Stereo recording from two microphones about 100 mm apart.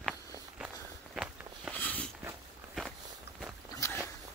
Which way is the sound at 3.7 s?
40° left (ahead or behind).